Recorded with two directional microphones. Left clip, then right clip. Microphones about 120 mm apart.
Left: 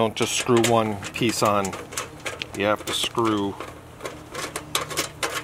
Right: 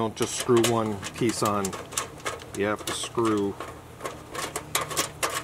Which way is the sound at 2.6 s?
20° left (ahead or behind).